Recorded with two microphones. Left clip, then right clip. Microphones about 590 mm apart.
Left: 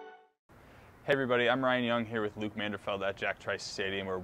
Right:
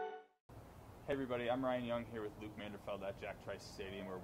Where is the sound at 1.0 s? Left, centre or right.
Left.